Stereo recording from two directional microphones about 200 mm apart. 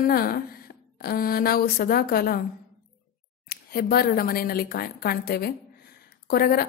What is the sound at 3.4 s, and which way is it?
A woman's voice, 50° left (ahead or behind).